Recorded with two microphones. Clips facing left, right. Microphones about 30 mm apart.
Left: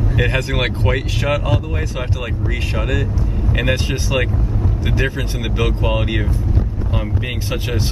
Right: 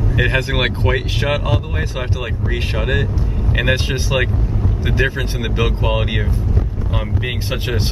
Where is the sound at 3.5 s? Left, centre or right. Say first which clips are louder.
Right 2 dB; centre.